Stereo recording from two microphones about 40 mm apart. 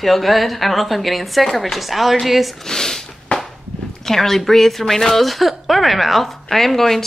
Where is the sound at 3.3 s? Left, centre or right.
Left.